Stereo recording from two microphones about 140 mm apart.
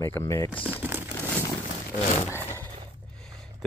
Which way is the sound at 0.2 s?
20° left (ahead or behind).